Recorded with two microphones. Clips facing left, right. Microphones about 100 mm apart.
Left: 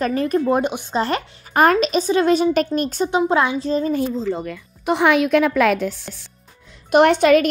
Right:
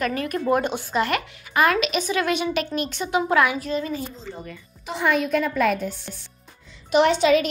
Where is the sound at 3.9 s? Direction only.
80° left.